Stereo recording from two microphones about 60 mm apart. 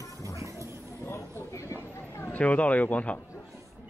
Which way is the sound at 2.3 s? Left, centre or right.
Left.